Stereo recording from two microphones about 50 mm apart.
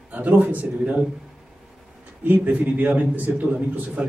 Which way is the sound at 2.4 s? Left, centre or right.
Right.